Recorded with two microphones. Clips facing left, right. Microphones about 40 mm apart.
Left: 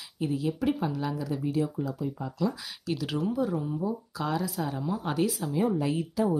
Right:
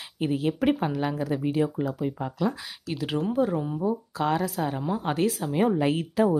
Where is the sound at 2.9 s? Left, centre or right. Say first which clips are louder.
Right 3 dB; right.